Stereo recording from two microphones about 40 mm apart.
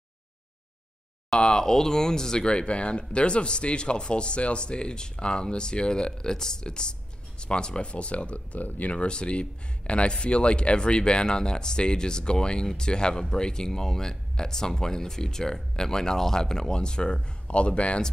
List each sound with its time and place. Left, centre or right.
1.3 s speech: left
8.5 s speech: left
8.9 s speech: left